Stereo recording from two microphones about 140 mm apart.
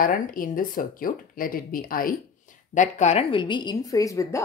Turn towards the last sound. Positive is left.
turn(degrees=25)  # may be behind; listen again after turning